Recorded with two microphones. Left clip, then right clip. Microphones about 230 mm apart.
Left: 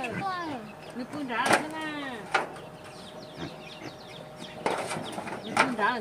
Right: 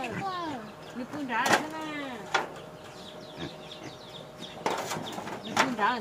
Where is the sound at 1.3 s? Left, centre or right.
Centre.